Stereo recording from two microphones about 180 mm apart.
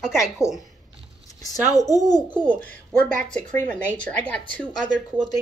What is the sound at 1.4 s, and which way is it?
Speech, 20° left (ahead or behind).